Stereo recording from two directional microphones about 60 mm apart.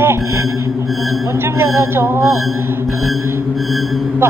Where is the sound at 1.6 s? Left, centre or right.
Right.